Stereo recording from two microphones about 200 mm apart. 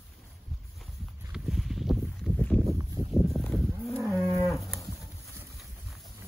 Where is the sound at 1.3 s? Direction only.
Centre (ahead or behind).